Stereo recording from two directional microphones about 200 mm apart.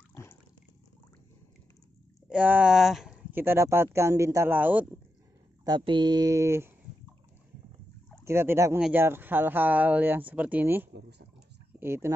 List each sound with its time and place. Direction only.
0.1 s water: 15° left (ahead or behind)
2.2 s speech: 5° right (ahead or behind)
5.7 s speech: 20° right (ahead or behind)
8.2 s speech: 15° right (ahead or behind)
10.9 s speech: 55° right (ahead or behind)
11.8 s speech: 10° right (ahead or behind)